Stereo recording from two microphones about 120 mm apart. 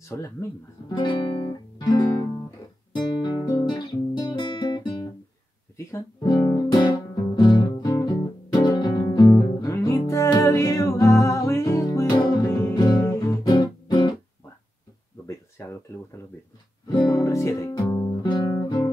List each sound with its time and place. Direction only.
0.1 s speech: 25° left (ahead or behind)
2.9 s guitar: 35° left (ahead or behind)
6.2 s guitar: 40° left (ahead or behind)
7.3 s music: 35° left (ahead or behind)
15.6 s a sound: 20° left (ahead or behind)
16.8 s guitar: 30° left (ahead or behind)